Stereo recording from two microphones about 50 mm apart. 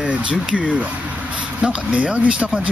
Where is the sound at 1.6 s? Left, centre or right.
Right.